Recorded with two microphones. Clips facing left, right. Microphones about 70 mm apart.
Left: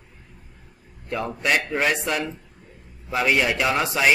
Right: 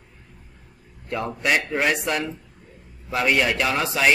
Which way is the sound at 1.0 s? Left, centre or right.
Centre.